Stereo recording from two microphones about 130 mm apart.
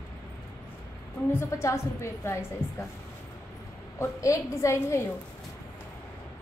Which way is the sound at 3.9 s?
20° left (ahead or behind).